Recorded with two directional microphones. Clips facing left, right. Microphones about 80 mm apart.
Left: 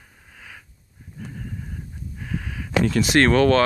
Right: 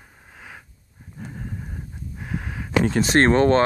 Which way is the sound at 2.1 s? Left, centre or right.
Right.